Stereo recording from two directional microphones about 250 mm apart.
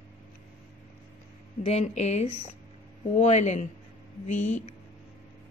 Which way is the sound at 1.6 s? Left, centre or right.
Left.